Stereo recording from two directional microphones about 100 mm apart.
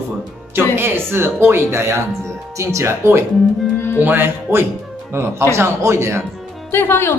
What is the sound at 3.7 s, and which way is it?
Music, 25° left (ahead or behind).